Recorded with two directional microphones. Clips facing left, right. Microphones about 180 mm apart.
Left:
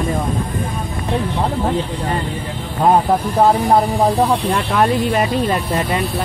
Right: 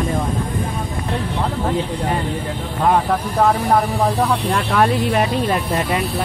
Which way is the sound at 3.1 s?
25° left (ahead or behind).